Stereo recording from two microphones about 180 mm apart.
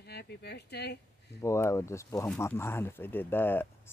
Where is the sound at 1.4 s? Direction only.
15° left (ahead or behind).